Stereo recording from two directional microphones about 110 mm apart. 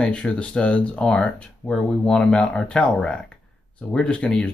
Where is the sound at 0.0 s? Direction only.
10° left (ahead or behind).